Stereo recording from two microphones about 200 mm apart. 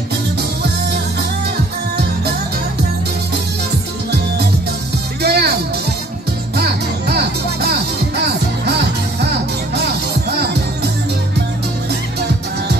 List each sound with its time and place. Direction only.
5.2 s music: 55° right (ahead or behind)